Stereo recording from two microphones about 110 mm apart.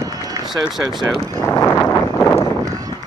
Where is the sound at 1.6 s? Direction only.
20° left (ahead or behind).